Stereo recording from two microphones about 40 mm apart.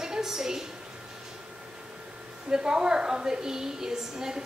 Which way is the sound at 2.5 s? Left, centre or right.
Centre.